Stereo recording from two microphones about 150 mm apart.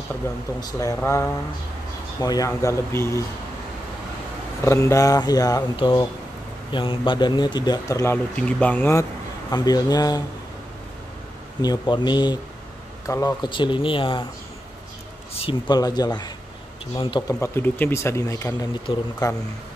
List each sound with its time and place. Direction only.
0.6 s a man's voice: 25° left (ahead or behind)
4.6 s a man's voice: 20° left (ahead or behind)
8.4 s speech: 10° left (ahead or behind)
9.5 s a man's voice: 25° left (ahead or behind)
11.6 s a man's voice: 25° left (ahead or behind)
15.7 s a man's voice: 25° left (ahead or behind)
17.3 s a man's voice: 15° left (ahead or behind)